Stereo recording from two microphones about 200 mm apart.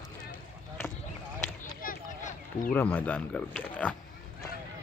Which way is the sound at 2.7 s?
10° left (ahead or behind).